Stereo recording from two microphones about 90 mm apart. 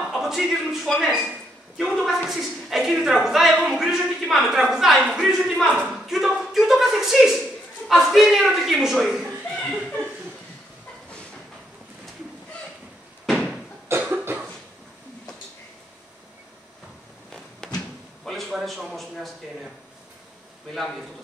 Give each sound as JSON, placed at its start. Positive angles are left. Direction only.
{"t": 0.0, "sound": "a man's voice", "side_deg": -5}
{"t": 14.0, "sound": "cough", "side_deg": -20}
{"t": 17.7, "sound": "a sound", "side_deg": 0}
{"t": 20.7, "sound": "a man's voice", "side_deg": 0}